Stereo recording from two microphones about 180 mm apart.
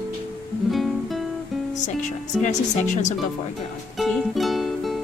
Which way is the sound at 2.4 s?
40° left (ahead or behind).